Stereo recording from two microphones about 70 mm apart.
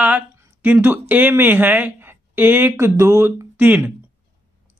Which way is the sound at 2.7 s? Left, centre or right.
Right.